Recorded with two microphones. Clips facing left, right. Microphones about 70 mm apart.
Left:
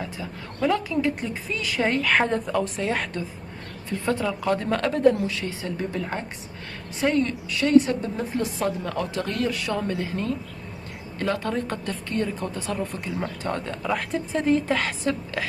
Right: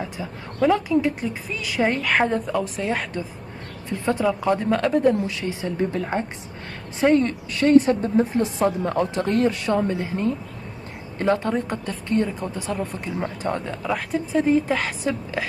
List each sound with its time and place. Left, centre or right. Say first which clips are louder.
0.0 s a woman's voice: right 2 dB; centre
3.9 s a woman's voice: right 3 dB; centre
5.4 s a woman's voice: right 5 dB; right
13.8 s a woman's voice: right 1 dB; centre